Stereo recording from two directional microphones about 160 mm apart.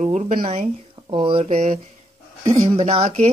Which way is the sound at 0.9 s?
30° right (ahead or behind).